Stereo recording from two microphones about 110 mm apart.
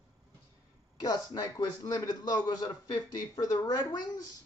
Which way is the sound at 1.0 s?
35° left (ahead or behind).